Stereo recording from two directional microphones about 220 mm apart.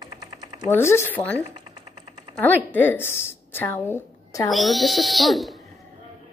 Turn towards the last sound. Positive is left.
turn(degrees=0)  # may be behind; listen again after turning